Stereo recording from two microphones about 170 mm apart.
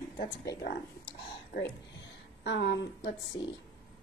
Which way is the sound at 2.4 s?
90° left.